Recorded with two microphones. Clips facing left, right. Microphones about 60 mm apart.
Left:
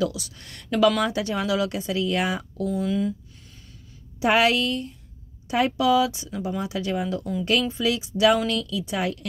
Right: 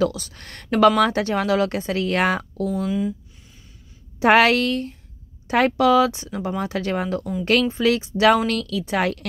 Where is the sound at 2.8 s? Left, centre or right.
Centre.